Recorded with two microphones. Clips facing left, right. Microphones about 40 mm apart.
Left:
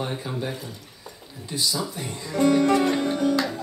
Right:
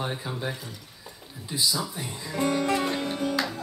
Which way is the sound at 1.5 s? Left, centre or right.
Centre.